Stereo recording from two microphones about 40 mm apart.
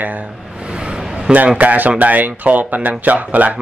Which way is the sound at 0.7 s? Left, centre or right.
Right.